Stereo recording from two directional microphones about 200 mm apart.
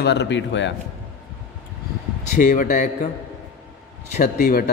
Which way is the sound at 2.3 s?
40° left (ahead or behind).